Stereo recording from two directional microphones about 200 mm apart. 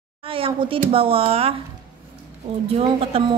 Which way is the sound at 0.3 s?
25° right (ahead or behind).